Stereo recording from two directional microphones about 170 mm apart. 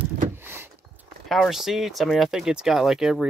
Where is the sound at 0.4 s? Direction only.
15° right (ahead or behind).